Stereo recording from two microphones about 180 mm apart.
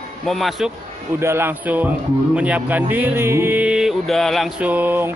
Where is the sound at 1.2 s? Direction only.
15° right (ahead or behind).